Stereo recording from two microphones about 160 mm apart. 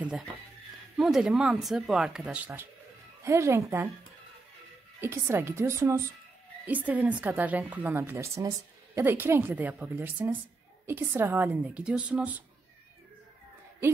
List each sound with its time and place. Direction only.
0.9 s a woman's voice: centre (ahead or behind)
5.0 s a woman's voice: 15° right (ahead or behind)